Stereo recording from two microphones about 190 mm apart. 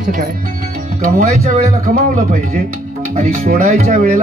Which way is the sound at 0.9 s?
35° right (ahead or behind).